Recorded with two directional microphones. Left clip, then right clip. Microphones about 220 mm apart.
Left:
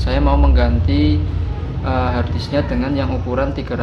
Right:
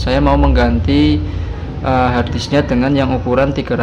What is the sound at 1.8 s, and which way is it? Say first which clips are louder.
Speech: right 6 dB; 20° right (ahead or behind).